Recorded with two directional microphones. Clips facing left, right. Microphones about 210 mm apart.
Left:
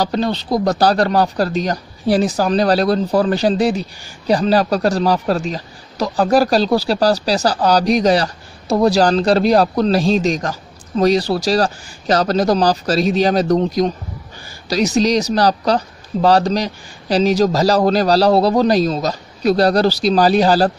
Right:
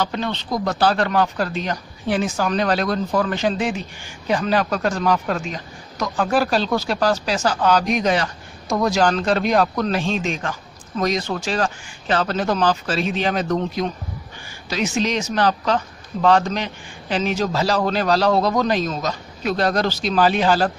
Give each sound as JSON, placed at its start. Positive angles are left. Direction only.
{"t": 0.0, "sound": "speech", "side_deg": 35}